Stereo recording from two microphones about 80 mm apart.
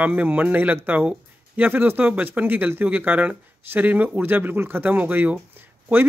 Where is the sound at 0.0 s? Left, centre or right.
Centre.